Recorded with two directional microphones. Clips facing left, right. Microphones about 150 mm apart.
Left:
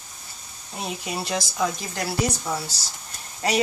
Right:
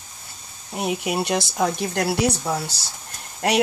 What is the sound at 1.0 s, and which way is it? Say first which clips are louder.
Speech: right 3 dB; 60° right (ahead or behind).